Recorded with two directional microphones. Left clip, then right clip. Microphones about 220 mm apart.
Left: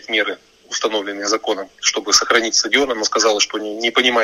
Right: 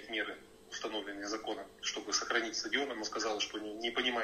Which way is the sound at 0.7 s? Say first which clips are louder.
Left 19 dB; 50° left (ahead or behind).